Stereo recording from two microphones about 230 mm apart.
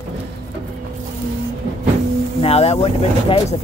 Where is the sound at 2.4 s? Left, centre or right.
Left.